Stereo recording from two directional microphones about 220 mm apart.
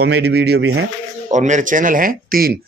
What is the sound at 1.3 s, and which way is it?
Speech, 35° right (ahead or behind).